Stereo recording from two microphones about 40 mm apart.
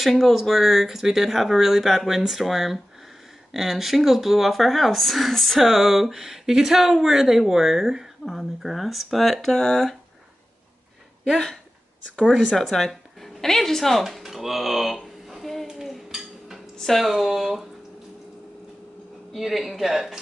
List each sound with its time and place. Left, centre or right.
0.2 s speech: centre
11.3 s speech: centre
12.7 s speech: centre
14.2 s a sound: centre
16.1 s dishes: centre
16.7 s a sound: centre
17.0 s speech: centre
19.3 s speech: centre